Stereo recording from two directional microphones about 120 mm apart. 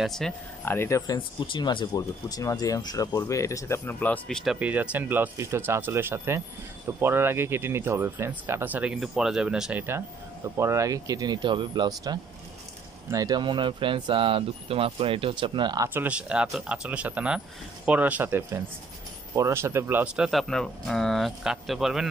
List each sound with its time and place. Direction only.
0.0 s speech: 5° left (ahead or behind)
0.7 s speech: 20° left (ahead or behind)
1.1 s speech: 40° left (ahead or behind); by 4.6 s 5° left (ahead or behind)
4.6 s speech: 15° right (ahead or behind); by 11.9 s 40° right (ahead or behind)
13.1 s speech: 30° right (ahead or behind)
15.9 s speech: 15° right (ahead or behind)
20.2 s speech: centre (ahead or behind)